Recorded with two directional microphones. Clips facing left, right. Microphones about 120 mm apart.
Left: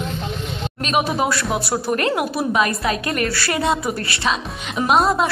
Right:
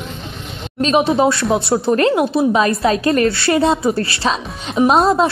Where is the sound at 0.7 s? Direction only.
30° right (ahead or behind).